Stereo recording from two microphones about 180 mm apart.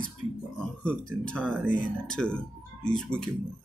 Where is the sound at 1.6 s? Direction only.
45° left (ahead or behind).